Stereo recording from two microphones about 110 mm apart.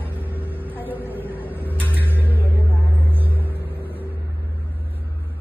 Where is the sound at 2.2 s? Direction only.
15° left (ahead or behind).